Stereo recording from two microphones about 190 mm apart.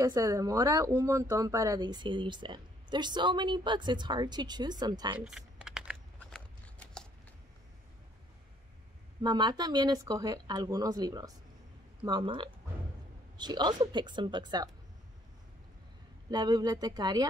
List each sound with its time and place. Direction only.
0.0 s speech: 15° right (ahead or behind)
5.2 s typing: 5° right (ahead or behind)
6.1 s a sound: 5° left (ahead or behind)
9.2 s speech: 20° right (ahead or behind)
16.3 s speech: 20° right (ahead or behind)